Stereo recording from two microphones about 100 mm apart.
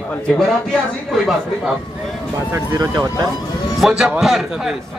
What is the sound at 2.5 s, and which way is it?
Speech, 35° right (ahead or behind).